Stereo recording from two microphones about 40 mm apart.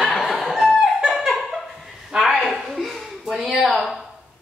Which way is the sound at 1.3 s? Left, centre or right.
Centre.